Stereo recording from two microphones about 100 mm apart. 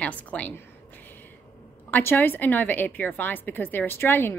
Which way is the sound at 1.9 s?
20° left (ahead or behind).